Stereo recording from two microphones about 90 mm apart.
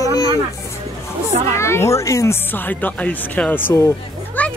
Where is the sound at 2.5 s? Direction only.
20° left (ahead or behind).